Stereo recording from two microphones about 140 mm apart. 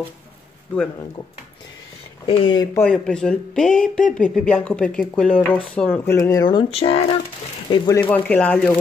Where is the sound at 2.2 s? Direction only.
40° left (ahead or behind).